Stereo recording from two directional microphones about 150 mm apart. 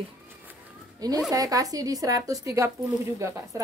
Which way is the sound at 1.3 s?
25° right (ahead or behind).